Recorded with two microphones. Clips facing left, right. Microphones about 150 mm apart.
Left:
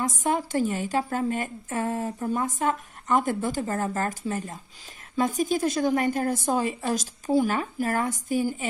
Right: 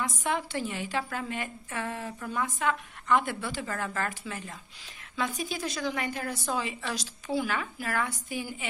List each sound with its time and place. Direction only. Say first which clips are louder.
0.0 s a woman's voice: left 5 dB; 45° left (ahead or behind)